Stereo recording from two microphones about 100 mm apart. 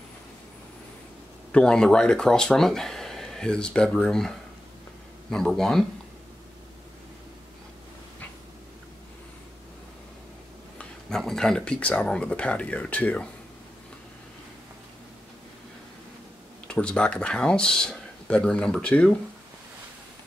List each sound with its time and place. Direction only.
1.5 s speech: 5° left (ahead or behind)
10.8 s speech: 5° left (ahead or behind)
16.6 s speech: 10° left (ahead or behind)